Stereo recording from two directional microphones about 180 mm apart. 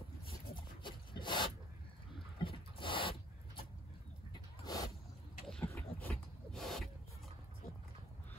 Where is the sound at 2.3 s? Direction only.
30° left (ahead or behind).